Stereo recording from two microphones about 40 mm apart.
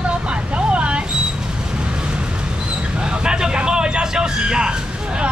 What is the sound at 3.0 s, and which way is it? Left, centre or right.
Speech, right.